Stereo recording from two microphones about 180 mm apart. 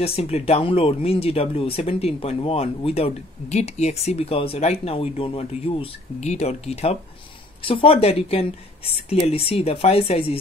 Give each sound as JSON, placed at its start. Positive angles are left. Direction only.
{"t": 0.0, "sound": "speech", "side_deg": 35}